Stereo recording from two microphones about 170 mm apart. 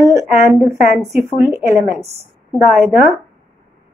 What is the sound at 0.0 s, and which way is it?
Speech, 15° right (ahead or behind).